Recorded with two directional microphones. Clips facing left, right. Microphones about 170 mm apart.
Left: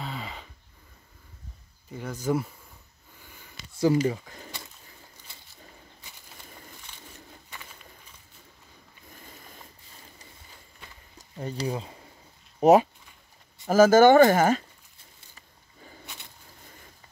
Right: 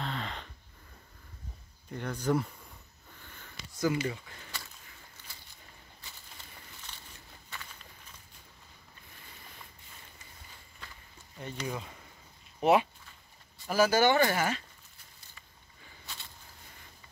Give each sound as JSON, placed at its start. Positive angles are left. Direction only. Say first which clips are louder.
{"t": 0.0, "sound": "a sound", "louder": "even", "side_deg": 5}
{"t": 1.9, "sound": "speech", "louder": "left 2 dB", "side_deg": 5}
{"t": 3.2, "sound": "sniff", "louder": "left 1 dB", "side_deg": 10}
{"t": 3.8, "sound": "speech", "louder": "left 8 dB", "side_deg": 35}
{"t": 7.4, "sound": "bird", "louder": "left 1 dB", "side_deg": 15}
{"t": 11.1, "sound": "speech", "louder": "left 7 dB", "side_deg": 35}
{"t": 12.5, "sound": "a sound", "louder": "left 7 dB", "side_deg": 40}
{"t": 13.7, "sound": "speech", "louder": "left 9 dB", "side_deg": 45}